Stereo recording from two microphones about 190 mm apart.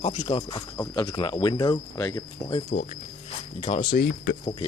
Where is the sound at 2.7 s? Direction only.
45° left (ahead or behind).